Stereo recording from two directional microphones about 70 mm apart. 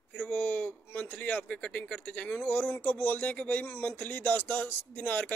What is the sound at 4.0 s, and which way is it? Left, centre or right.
A man's voice, left.